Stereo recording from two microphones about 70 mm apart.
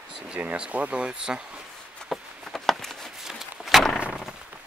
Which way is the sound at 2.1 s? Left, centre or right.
Centre.